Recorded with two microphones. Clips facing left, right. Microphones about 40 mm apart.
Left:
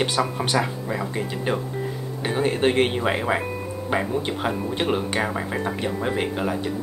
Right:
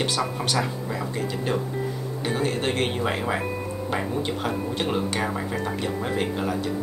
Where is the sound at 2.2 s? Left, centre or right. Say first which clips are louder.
Left 4 dB; centre.